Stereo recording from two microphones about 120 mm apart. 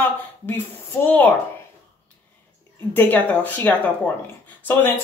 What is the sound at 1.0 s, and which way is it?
Speech, 15° left (ahead or behind).